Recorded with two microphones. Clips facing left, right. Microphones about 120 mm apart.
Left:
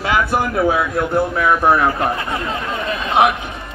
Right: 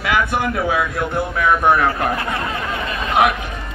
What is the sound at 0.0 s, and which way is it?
Speech, 30° left (ahead or behind).